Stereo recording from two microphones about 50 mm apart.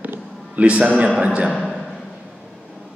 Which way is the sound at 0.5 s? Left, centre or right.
Right.